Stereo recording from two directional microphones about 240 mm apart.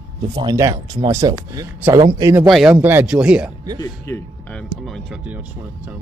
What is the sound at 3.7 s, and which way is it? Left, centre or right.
Speech, centre.